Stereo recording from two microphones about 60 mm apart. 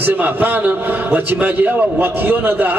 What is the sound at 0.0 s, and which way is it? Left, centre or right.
A man's voice, right.